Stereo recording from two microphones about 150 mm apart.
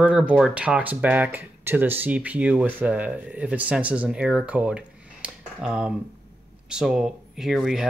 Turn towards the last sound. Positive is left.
turn(degrees=0)  # may be behind; listen again after turning